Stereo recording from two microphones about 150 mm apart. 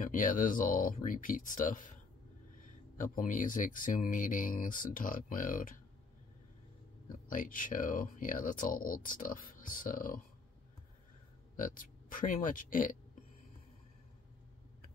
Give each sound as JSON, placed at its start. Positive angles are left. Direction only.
{"t": 0.0, "sound": "speech", "side_deg": 65}
{"t": 3.0, "sound": "speech", "side_deg": 60}
{"t": 7.2, "sound": "speech", "side_deg": 65}
{"t": 11.5, "sound": "speech", "side_deg": 65}